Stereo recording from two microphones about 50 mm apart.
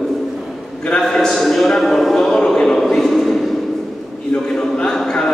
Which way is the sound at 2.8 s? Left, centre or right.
Centre.